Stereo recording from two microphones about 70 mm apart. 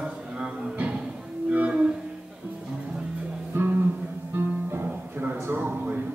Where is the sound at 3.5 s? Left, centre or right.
Right.